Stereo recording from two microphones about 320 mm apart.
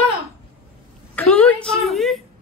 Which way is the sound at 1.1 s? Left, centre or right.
Centre.